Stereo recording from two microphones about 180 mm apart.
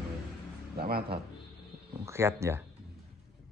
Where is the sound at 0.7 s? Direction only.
60° right (ahead or behind).